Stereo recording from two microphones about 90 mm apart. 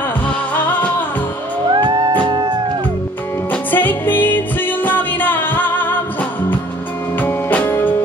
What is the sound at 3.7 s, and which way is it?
Music, 20° left (ahead or behind).